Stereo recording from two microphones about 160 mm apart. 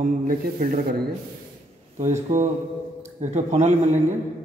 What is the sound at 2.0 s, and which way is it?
A man's voice, 45° right (ahead or behind).